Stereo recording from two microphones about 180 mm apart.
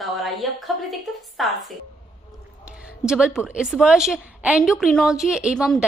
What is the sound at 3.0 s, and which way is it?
A woman's voice, 5° right (ahead or behind).